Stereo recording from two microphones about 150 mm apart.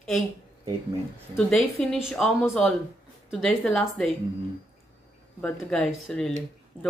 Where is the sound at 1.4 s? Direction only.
Centre (ahead or behind).